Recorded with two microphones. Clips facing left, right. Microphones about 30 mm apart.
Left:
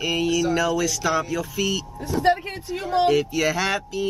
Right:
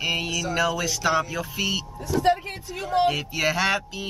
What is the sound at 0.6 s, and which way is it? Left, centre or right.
Speech, centre.